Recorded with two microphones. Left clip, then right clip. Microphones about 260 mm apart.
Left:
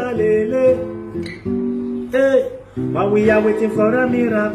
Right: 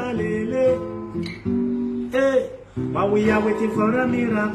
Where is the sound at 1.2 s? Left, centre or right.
Centre.